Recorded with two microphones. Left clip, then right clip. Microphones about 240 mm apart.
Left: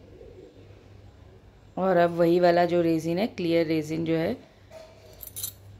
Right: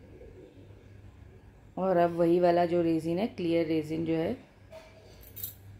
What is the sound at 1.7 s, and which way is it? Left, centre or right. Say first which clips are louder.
Speech: left 4 dB; centre.